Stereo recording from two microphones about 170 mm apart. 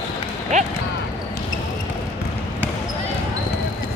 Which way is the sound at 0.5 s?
45° right (ahead or behind).